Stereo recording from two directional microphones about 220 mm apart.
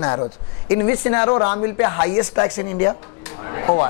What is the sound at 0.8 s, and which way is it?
Speech, 20° left (ahead or behind).